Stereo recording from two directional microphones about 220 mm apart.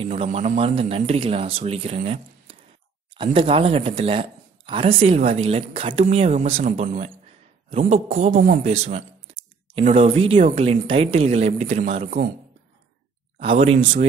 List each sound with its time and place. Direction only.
0.0 s speech: 30° right (ahead or behind)
13.4 s speech: 25° right (ahead or behind)